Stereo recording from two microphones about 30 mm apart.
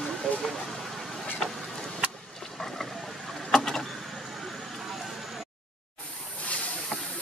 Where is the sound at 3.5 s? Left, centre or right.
Centre.